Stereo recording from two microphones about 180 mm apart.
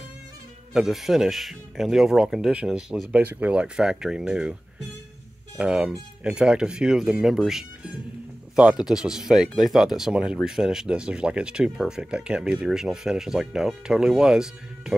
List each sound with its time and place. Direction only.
0.7 s speech: centre (ahead or behind)
5.6 s speech: 5° right (ahead or behind)